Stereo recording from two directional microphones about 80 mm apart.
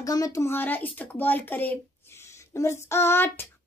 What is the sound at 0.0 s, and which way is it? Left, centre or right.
Speech, left.